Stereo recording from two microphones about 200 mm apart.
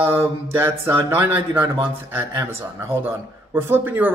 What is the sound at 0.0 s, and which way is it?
Speech, 10° right (ahead or behind).